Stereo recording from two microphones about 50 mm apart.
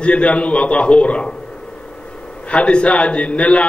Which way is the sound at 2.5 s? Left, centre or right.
Left.